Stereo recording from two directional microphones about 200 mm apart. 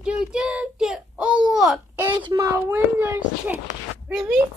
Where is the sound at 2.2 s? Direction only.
15° right (ahead or behind).